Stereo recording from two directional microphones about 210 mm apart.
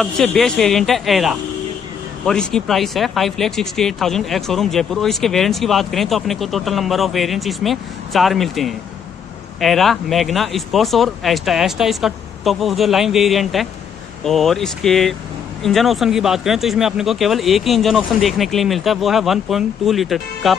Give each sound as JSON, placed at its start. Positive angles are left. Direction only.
{"t": 0.0, "sound": "speech", "side_deg": 0}